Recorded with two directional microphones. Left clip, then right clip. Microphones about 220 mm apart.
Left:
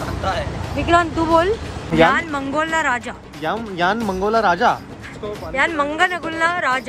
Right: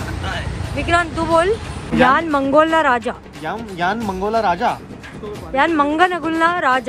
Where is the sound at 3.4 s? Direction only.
10° left (ahead or behind).